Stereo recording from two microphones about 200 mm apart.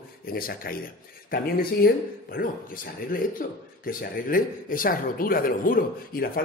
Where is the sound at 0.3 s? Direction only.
45° left (ahead or behind).